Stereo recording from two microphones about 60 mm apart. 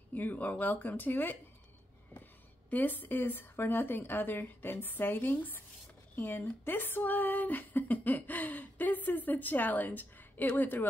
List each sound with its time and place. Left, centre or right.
0.1 s speech: left
2.7 s a woman's voice: left
6.6 s speech: left